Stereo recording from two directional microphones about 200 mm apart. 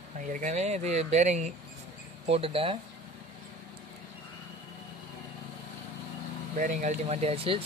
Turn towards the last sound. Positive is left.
turn(degrees=-30)  # may be behind; listen again after turning